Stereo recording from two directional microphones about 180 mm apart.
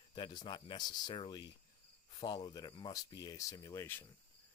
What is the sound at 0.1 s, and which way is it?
Speech, 25° left (ahead or behind).